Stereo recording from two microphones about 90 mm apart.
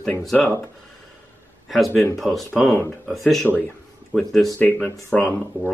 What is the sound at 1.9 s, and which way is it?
Speech, 30° left (ahead or behind).